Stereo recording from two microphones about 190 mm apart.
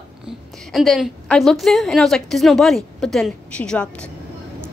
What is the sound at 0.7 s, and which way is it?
A woman's voice, centre (ahead or behind).